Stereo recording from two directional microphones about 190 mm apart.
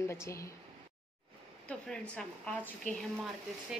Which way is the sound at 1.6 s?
5° left (ahead or behind).